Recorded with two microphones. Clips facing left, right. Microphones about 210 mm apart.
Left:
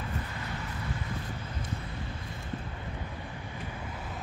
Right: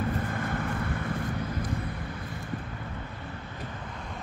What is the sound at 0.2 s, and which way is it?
Vehicle, 50° right (ahead or behind).